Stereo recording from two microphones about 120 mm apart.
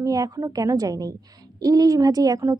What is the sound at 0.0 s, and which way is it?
A woman's voice, 30° right (ahead or behind).